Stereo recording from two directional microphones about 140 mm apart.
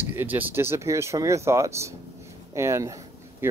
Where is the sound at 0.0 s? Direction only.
15° right (ahead or behind).